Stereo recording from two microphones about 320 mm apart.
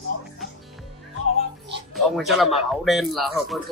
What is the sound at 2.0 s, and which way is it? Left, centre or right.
A man's voice, centre.